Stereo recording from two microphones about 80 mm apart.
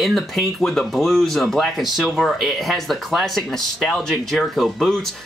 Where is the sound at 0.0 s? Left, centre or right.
Centre.